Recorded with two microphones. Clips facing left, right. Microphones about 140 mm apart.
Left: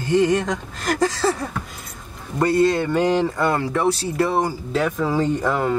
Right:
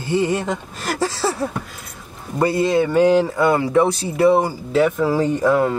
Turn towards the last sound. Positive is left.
turn(degrees=0)  # may be behind; listen again after turning